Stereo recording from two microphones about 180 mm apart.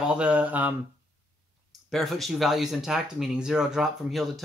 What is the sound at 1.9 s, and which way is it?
Speech, centre (ahead or behind).